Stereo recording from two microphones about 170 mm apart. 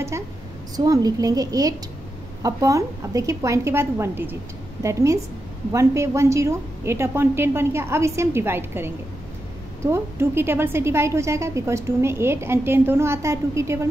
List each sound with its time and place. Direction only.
0.7 s a woman's voice: 20° right (ahead or behind)